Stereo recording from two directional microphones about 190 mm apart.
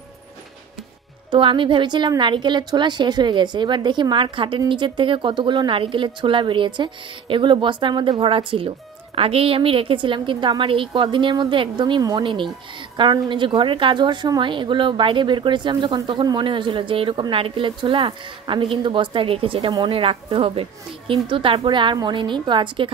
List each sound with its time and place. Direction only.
1.3 s a woman's voice: 25° right (ahead or behind)